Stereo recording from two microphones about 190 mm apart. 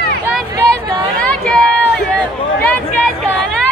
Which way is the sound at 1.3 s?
5° left (ahead or behind).